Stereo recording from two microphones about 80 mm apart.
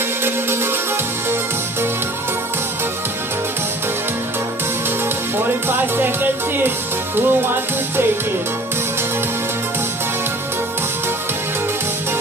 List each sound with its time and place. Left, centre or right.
5.4 s speech: right
7.2 s music: right